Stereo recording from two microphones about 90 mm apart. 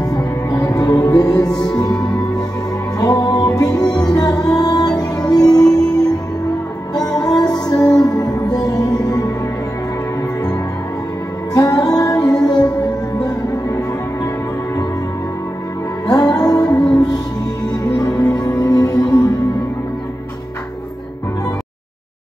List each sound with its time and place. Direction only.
0.0 s music: 45° left (ahead or behind)
3.0 s music: 40° left (ahead or behind)
7.0 s music: 45° left (ahead or behind)
11.5 s music: 45° left (ahead or behind)
16.1 s music: 45° left (ahead or behind)